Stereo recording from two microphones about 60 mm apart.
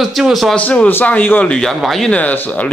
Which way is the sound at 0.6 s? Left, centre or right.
Left.